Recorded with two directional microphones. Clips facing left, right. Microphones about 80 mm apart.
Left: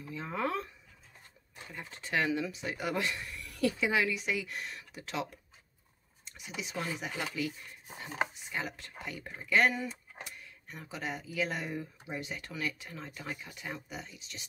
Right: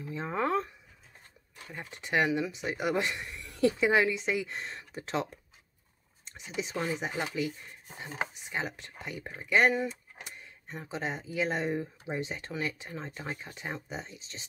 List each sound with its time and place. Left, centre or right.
0.1 s speech: right
1.7 s speech: centre
6.5 s speech: right
8.5 s speech: right